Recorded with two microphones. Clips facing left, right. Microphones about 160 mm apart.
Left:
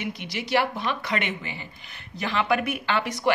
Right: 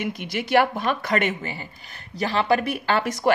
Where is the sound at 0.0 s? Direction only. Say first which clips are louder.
Right 4 dB; 50° right (ahead or behind).